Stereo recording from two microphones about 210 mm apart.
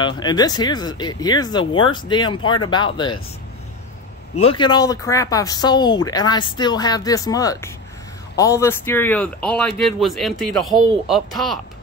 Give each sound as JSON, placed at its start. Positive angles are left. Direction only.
{"t": 0.0, "sound": "speech", "side_deg": 20}
{"t": 4.4, "sound": "a child's voice", "side_deg": 25}